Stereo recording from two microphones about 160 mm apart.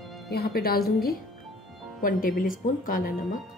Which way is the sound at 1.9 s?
60° left (ahead or behind).